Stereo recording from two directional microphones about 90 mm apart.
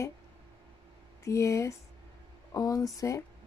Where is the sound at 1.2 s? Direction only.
35° left (ahead or behind).